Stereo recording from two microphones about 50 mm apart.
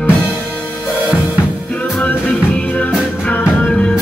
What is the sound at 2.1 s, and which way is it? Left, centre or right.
Music, left.